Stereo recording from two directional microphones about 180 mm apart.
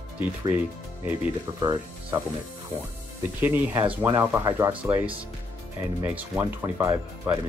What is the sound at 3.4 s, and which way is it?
Speech, 10° right (ahead or behind).